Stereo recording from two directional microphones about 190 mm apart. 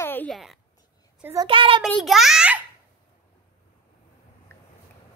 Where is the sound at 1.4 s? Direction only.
30° right (ahead or behind).